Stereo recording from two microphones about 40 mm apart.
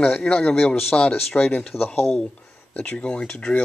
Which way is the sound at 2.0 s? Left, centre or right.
Centre.